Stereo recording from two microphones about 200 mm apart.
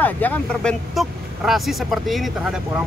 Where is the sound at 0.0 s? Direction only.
10° left (ahead or behind).